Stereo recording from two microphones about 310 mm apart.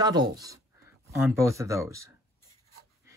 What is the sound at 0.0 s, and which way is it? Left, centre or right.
Speech, centre.